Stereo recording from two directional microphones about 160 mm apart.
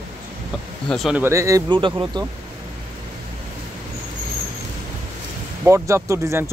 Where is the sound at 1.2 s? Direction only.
20° right (ahead or behind).